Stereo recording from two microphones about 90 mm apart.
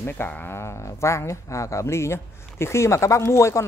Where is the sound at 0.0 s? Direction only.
25° left (ahead or behind).